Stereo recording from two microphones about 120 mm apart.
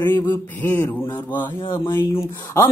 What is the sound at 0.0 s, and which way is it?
Speech, 15° left (ahead or behind).